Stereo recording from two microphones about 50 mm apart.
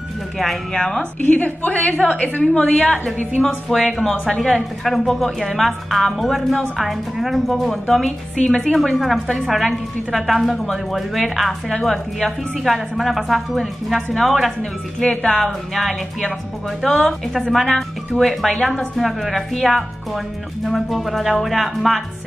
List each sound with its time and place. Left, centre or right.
0.7 s speech: centre
1.2 s a woman's voice: left
3.4 s a woman's voice: centre
8.4 s speech: centre
8.7 s a woman's voice: centre
14.6 s speech: centre
15.4 s a woman's voice: centre